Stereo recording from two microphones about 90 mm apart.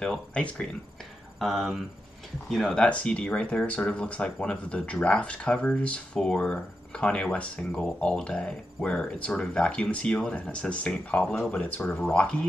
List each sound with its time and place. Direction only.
0.0 s speech: 10° left (ahead or behind)
1.4 s speech: centre (ahead or behind)